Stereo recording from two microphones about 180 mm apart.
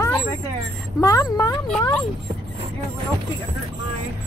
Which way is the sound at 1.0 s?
20° left (ahead or behind).